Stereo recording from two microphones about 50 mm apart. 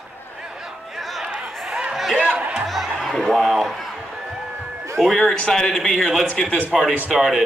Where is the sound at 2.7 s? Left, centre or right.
Centre.